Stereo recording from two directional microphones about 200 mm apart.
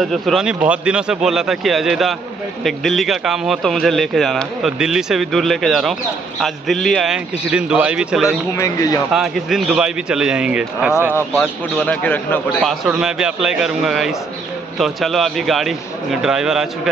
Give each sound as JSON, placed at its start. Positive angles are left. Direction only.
{"t": 0.0, "sound": "speech", "side_deg": 0}
{"t": 8.5, "sound": "a man's voice", "side_deg": 15}
{"t": 9.1, "sound": "speech", "side_deg": 0}
{"t": 11.3, "sound": "a man's voice", "side_deg": 5}
{"t": 12.8, "sound": "speech", "side_deg": -5}